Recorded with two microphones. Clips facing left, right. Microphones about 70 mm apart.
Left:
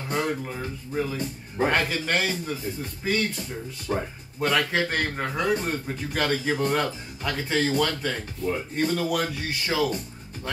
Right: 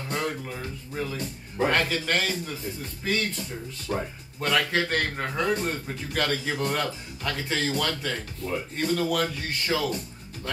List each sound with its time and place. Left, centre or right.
0.1 s speech: centre
3.9 s speech: left
4.4 s a man's voice: centre